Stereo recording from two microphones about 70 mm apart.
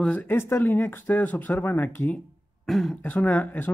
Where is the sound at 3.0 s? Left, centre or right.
Left.